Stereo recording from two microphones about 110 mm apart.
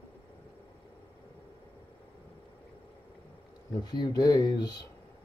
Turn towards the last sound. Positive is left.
turn(degrees=35)  # may be behind; listen again after turning